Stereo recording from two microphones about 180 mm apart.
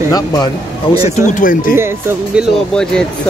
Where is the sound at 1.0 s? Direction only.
45° left (ahead or behind).